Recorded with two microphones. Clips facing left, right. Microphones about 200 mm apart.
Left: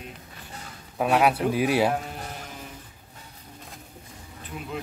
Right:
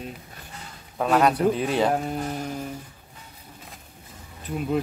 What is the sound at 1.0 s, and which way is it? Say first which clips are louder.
Speech: right 2 dB; 10° left (ahead or behind).